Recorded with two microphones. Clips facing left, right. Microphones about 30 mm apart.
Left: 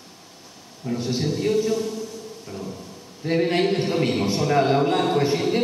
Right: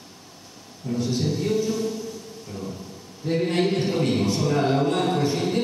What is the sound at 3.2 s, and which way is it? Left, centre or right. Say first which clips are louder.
A man's voice: left 2 dB; centre.